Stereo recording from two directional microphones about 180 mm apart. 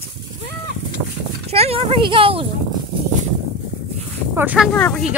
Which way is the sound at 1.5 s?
35° right (ahead or behind).